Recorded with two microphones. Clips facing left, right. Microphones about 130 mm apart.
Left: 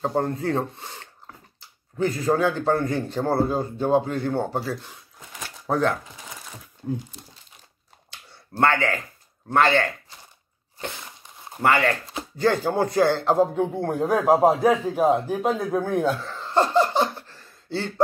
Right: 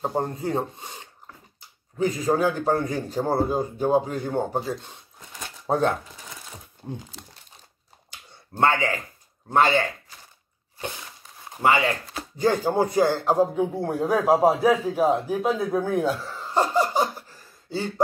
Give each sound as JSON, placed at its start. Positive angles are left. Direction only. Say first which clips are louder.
{"t": 0.0, "sound": "speech", "louder": "left 2 dB", "side_deg": -15}
{"t": 2.0, "sound": "a man's voice", "louder": "even", "side_deg": -15}
{"t": 8.1, "sound": "clicking", "louder": "left 2 dB", "side_deg": -15}
{"t": 9.5, "sound": "a man's voice", "louder": "even", "side_deg": -15}
{"t": 11.6, "sound": "a man's voice", "louder": "even", "side_deg": -15}